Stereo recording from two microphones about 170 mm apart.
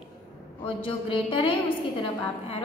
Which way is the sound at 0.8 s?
30° left (ahead or behind).